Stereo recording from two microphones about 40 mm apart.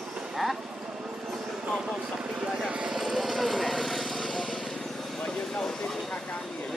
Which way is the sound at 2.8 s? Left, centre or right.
Centre.